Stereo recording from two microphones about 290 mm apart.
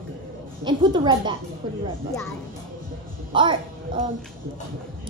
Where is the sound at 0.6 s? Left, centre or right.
Centre.